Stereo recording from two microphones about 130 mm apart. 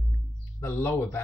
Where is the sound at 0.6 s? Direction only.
20° left (ahead or behind).